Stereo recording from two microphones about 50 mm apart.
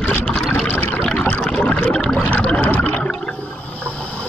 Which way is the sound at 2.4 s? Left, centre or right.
Left.